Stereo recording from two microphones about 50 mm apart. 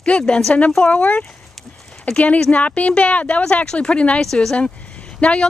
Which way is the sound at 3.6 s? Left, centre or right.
Centre.